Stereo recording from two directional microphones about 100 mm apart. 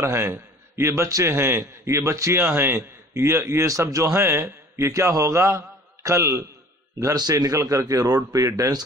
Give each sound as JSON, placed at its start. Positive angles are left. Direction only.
{"t": 0.0, "sound": "a man's voice", "side_deg": -25}